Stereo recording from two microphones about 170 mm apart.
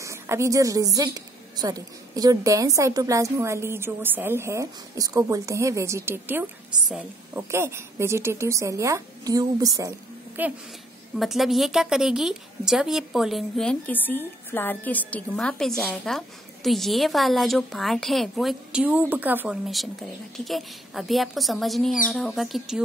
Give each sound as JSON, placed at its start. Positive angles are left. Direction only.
{"t": 0.0, "sound": "a woman's voice", "side_deg": -15}
{"t": 11.1, "sound": "a woman's voice", "side_deg": 0}